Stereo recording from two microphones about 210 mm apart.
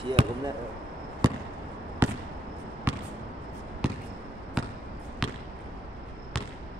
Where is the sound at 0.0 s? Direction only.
25° right (ahead or behind).